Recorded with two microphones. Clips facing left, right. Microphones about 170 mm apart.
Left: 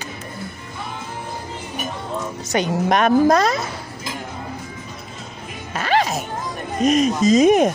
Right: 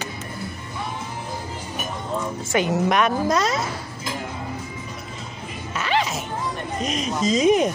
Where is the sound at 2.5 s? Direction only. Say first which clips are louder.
Left 2 dB; 40° left (ahead or behind).